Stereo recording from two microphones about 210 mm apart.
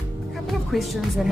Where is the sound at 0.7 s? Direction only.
Centre (ahead or behind).